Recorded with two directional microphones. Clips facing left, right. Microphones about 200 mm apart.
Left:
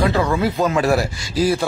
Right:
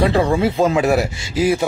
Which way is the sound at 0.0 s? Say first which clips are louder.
Right 2 dB; 30° right (ahead or behind).